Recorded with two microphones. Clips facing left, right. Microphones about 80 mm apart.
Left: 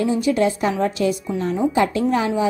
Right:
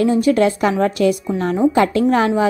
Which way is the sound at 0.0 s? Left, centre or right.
Right.